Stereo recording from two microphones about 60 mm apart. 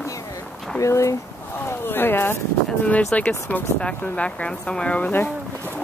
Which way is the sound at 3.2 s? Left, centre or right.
Left.